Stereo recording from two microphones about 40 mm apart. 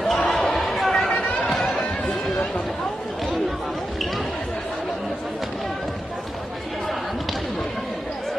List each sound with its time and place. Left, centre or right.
0.0 s basketball bounce: centre
1.4 s music: centre